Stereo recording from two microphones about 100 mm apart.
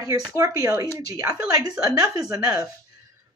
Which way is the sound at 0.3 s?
35° right (ahead or behind).